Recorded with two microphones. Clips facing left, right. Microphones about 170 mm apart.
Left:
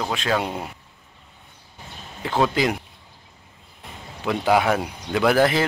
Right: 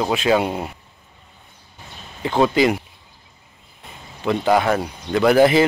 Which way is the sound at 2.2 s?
Centre (ahead or behind).